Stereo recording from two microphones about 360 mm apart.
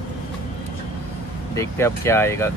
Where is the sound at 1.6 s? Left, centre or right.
Centre.